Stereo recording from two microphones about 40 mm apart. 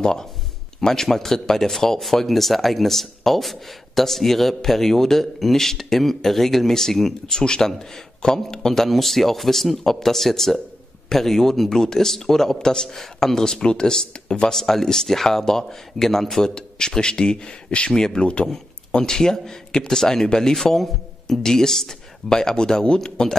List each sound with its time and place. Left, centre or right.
0.0 s speech: centre
7.3 s speech: centre
14.5 s speech: centre; by 17.9 s left
17.9 s speech: centre